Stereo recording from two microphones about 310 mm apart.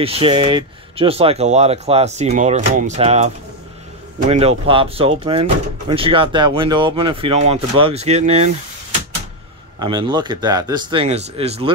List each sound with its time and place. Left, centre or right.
0.0 s speech: centre
4.3 s speech: centre
9.8 s speech: centre